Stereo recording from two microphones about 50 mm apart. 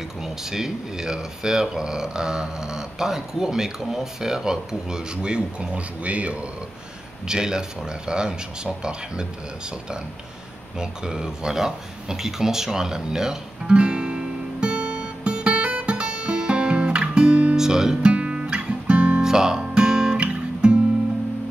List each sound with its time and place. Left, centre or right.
0.2 s speech: centre; by 6.4 s right
7.2 s speech: centre
10.8 s a sound: centre
17.6 s music: centre; by 19.2 s right
19.2 s music: centre
19.9 s guitar: centre
20.2 s guitar: right